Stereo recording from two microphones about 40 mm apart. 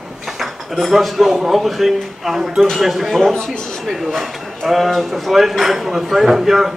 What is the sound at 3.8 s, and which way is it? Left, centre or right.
Speech, centre.